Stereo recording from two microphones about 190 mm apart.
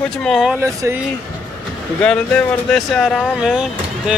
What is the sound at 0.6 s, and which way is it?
Speech, 15° right (ahead or behind).